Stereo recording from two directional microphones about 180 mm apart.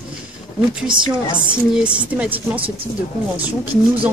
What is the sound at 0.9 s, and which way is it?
Speech, 25° right (ahead or behind).